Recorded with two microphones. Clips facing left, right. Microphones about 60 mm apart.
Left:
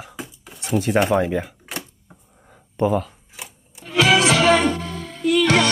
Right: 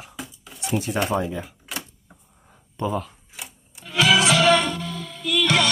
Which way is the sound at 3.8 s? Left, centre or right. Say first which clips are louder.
Left 2 dB; left.